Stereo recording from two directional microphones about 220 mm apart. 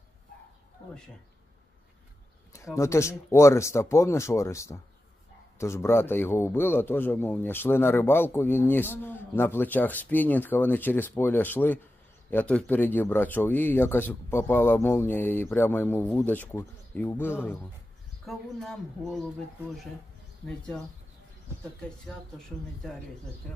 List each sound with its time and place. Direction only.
2.5 s a man's voice: 15° left (ahead or behind)
23.5 s speech: centre (ahead or behind)